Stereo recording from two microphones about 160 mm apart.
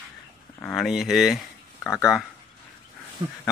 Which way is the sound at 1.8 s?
15° left (ahead or behind).